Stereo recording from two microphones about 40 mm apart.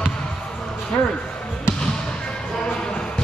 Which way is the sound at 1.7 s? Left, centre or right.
Left.